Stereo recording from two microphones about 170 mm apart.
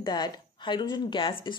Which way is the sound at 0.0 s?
25° left (ahead or behind).